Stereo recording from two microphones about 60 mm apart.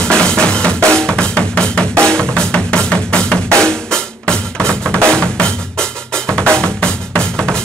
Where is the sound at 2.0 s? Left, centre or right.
Centre.